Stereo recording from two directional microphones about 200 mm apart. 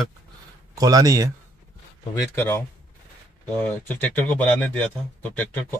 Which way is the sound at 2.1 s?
10° left (ahead or behind).